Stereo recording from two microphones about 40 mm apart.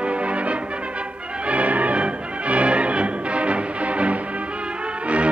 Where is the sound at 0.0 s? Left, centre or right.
Right.